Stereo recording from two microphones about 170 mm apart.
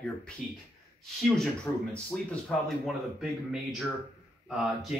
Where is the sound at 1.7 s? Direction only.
15° left (ahead or behind).